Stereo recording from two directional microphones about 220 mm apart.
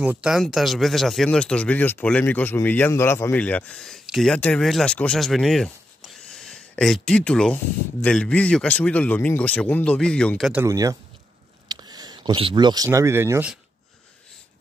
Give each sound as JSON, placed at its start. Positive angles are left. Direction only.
{"t": 0.0, "sound": "speech", "side_deg": -5}